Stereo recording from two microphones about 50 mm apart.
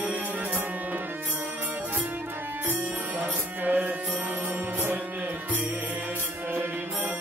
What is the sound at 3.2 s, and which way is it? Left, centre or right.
Music, right.